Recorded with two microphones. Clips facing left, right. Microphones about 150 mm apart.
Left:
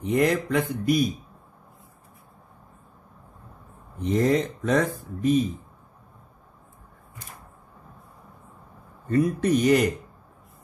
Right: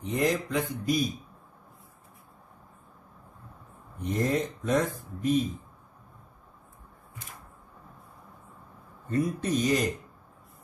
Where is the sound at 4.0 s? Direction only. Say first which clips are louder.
Left 6 dB; 90° left.